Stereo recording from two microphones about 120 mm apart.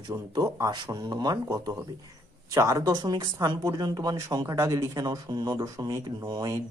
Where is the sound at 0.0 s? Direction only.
35° right (ahead or behind).